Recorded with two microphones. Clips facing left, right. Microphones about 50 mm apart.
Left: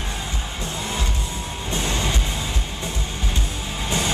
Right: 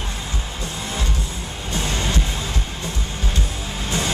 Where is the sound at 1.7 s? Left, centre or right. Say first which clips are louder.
Even; left.